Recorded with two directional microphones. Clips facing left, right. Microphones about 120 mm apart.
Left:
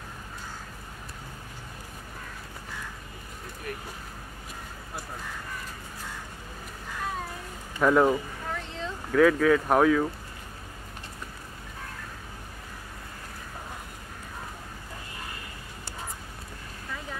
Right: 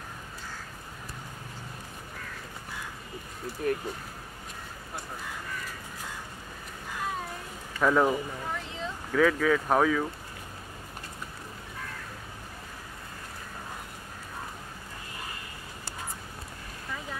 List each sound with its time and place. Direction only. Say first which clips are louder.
3.6 s speech: right 9 dB; 35° right (ahead or behind)
7.8 s speech: left 3 dB; 5° left (ahead or behind)